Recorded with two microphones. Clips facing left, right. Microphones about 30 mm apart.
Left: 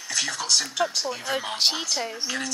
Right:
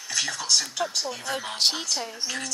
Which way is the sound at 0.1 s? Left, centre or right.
Centre.